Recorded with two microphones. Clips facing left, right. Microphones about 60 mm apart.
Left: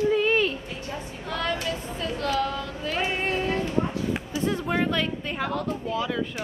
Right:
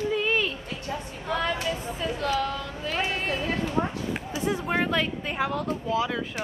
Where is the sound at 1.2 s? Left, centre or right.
Centre.